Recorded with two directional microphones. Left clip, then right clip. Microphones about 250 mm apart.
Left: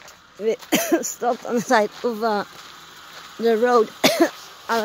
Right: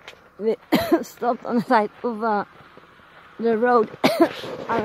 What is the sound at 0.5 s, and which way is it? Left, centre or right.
Cough, centre.